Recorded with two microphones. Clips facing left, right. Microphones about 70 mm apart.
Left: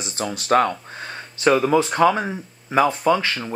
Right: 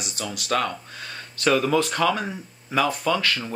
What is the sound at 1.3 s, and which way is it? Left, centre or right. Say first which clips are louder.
Speech: left 4 dB; centre.